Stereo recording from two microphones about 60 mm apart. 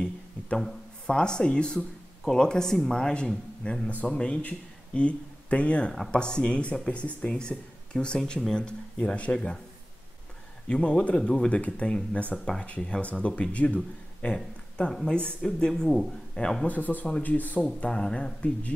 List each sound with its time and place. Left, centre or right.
0.6 s a sound: centre
1.1 s speech: centre
10.7 s speech: centre
14.2 s a sound: centre
14.9 s speech: centre
16.6 s speech: left